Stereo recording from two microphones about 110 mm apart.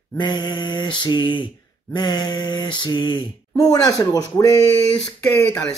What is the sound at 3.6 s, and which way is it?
Speech, 35° left (ahead or behind).